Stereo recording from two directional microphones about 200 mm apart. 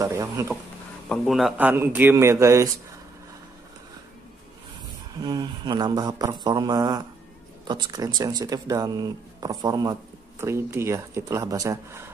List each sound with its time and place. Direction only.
0.0 s a man's voice: 15° right (ahead or behind)
1.0 s a man's voice: 5° left (ahead or behind); by 2.7 s 15° right (ahead or behind)
5.2 s a man's voice: 20° right (ahead or behind)